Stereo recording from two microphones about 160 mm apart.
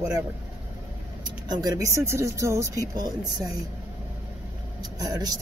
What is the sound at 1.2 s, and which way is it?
Speech, 25° right (ahead or behind).